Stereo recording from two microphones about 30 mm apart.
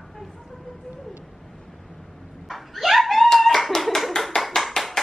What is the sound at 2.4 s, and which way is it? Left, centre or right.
Dog, centre.